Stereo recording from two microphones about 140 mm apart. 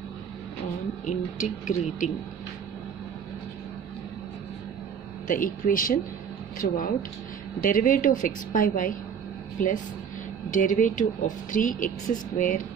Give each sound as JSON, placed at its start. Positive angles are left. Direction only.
{"t": 1.0, "sound": "speech", "side_deg": 65}
{"t": 5.3, "sound": "speech", "side_deg": 75}
{"t": 7.6, "sound": "speech", "side_deg": 75}